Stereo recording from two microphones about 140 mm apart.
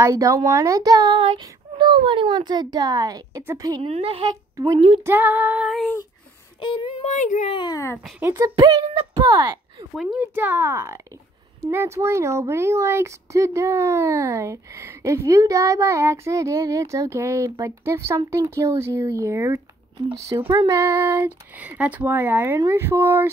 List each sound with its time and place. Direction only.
0.0 s speech: 25° right (ahead or behind)
3.8 s speech: 45° right (ahead or behind)
5.0 s speech: 15° right (ahead or behind)
6.6 s speech: 35° left (ahead or behind)
7.0 s speech: 55° left (ahead or behind)
7.5 s speech: 25° left (ahead or behind)
8.2 s speech: 25° right (ahead or behind)
10.1 s speech: 15° right (ahead or behind)